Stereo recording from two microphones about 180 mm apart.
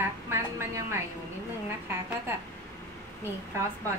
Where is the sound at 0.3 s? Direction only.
15° right (ahead or behind).